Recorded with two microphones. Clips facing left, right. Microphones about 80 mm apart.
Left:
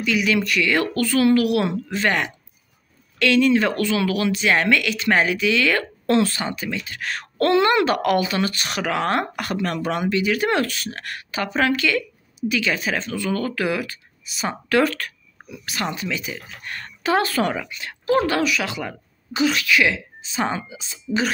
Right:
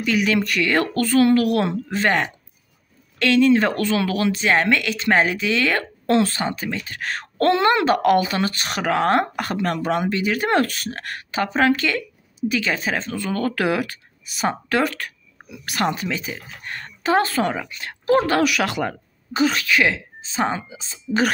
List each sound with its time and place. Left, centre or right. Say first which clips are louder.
0.0 s speech: right 1 dB; right
13.5 s speech: right 2 dB; right
14.8 s a sound: left 2 dB; centre
15.6 s a woman's voice: right 4 dB; right
17.7 s speech: right 2 dB; right
18.4 s a woman's voice: right 3 dB; right